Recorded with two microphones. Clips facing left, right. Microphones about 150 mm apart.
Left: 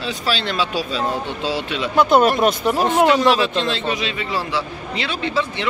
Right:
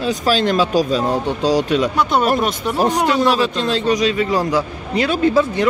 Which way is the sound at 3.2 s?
40° right (ahead or behind).